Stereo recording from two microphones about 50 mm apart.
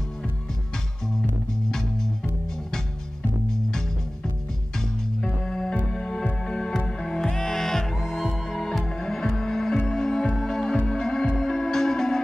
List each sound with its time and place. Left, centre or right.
5.4 s music: centre